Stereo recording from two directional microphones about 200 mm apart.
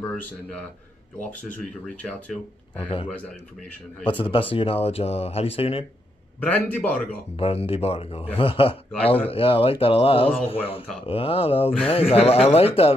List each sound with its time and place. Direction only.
0.1 s a man's voice: 5° left (ahead or behind)
1.6 s speech: 5° left (ahead or behind)
4.0 s speech: 25° left (ahead or behind)
6.4 s speech: 10° left (ahead or behind)
7.3 s speech: 30° left (ahead or behind)